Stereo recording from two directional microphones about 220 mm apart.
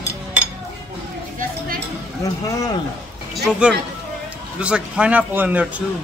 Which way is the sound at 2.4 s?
15° left (ahead or behind).